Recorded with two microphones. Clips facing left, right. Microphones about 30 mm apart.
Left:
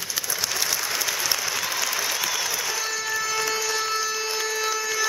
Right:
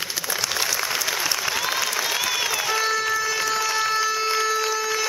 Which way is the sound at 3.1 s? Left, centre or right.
Centre.